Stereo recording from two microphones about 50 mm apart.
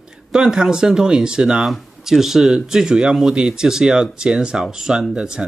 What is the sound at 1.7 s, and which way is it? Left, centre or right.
Speech, centre.